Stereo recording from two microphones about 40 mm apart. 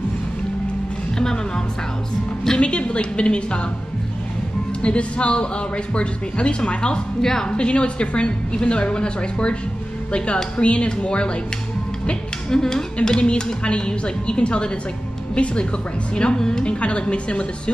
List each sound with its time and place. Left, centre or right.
1.1 s music: centre
2.6 s speech: left
4.8 s speech: left
7.2 s a woman's voice: centre
7.5 s a woman's voice: left
16.6 s speech: left